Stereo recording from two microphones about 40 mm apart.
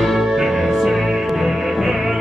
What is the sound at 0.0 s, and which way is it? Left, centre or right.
Music, centre.